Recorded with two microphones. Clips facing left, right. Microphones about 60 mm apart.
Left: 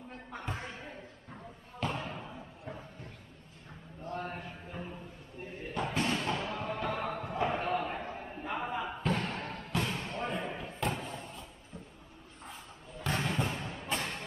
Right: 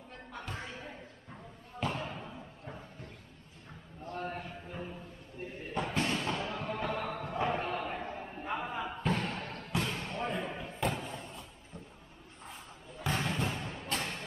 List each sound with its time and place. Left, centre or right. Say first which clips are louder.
0.3 s basketball bounce: left 2 dB; centre
0.7 s basketball bounce: even; centre
4.0 s a sound: left 1 dB; left
4.3 s a sound: right 1 dB; centre
6.0 s a sound: left 1 dB; centre
9.1 s basketball bounce: even; centre
9.4 s thump: left 1 dB; centre
9.8 s slam: even; centre
13.0 s basketball bounce: even; centre
13.9 s music: even; centre